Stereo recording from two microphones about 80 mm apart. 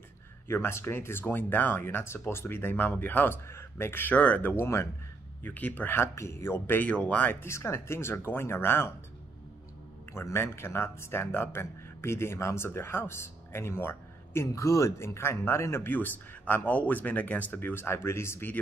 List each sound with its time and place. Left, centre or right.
0.5 s speech: left
7.4 s speech: left
10.1 s speech: left